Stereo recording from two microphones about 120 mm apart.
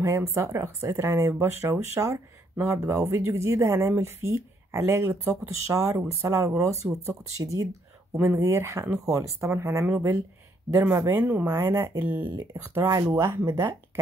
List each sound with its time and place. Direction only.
0.0 s speech: 25° right (ahead or behind)
11.7 s speech: 30° right (ahead or behind)
12.0 s speech: 15° right (ahead or behind)